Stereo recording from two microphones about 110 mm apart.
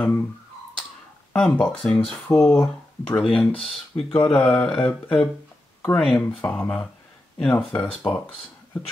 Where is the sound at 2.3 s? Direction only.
25° left (ahead or behind).